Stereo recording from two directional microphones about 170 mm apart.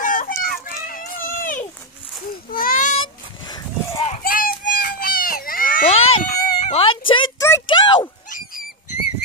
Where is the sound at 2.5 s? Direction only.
55° left (ahead or behind).